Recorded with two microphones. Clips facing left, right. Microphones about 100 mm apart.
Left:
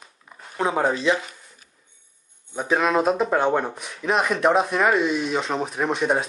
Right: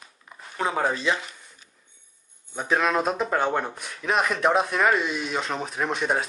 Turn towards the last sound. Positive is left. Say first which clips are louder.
# left 3 dB
turn(degrees=0)  # may be behind; listen again after turning